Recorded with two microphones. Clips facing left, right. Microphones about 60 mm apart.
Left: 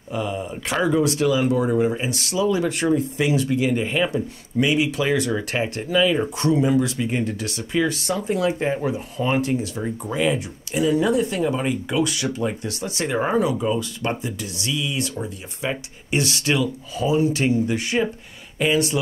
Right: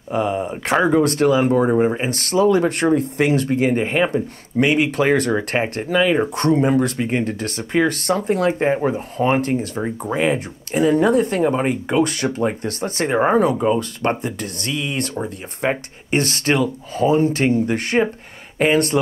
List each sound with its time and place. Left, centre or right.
0.1 s speech: right
9.8 s speech: right